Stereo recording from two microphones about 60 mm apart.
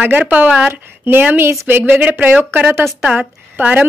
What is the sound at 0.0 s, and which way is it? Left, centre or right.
A woman's voice, right.